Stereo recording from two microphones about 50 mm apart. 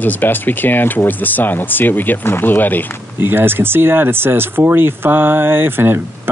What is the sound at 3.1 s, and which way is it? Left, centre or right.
Speech, right.